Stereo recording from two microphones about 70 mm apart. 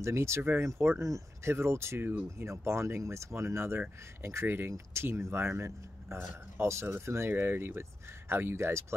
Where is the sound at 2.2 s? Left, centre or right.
Right.